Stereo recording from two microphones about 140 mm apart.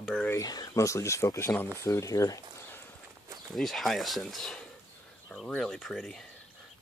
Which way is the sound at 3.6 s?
Centre (ahead or behind).